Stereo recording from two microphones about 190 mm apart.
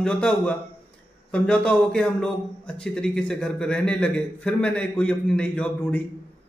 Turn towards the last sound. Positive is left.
turn(degrees=5)  # may be behind; listen again after turning